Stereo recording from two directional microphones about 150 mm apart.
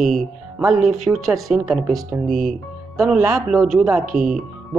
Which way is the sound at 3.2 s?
25° right (ahead or behind).